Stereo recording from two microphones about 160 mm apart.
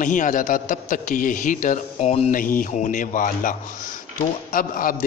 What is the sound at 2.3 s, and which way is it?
A man's voice, 60° left (ahead or behind).